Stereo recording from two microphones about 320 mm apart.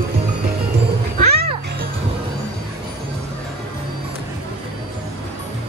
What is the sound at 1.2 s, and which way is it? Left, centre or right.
Music, right.